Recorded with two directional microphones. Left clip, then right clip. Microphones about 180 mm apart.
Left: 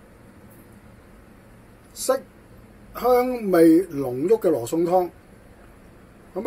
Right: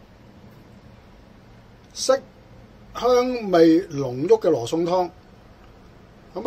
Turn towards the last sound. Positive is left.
turn(degrees=0)  # may be behind; listen again after turning